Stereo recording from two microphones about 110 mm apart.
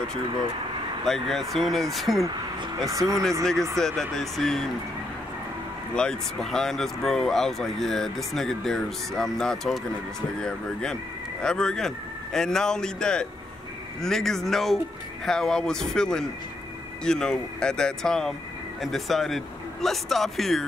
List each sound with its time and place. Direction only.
1.0 s speech: centre (ahead or behind)
2.9 s speech: 30° right (ahead or behind)
3.7 s speech: 5° left (ahead or behind)
5.9 s speech: 5° left (ahead or behind)